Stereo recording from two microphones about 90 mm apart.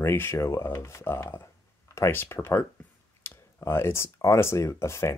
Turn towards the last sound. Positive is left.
turn(degrees=30)  # may be behind; listen again after turning